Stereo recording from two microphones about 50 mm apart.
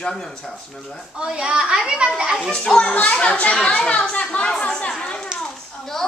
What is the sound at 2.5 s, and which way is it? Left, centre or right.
A woman's voice, centre.